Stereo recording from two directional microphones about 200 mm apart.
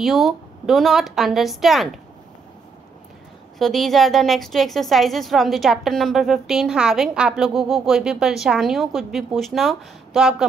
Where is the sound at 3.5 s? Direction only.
Centre (ahead or behind).